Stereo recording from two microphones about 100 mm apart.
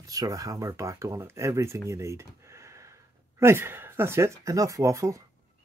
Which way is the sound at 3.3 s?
25° right (ahead or behind).